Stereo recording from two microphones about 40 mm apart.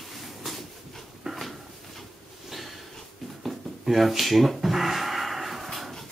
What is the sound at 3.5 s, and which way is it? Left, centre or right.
Rub, centre.